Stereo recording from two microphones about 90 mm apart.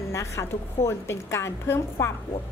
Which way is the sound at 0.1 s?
35° left (ahead or behind).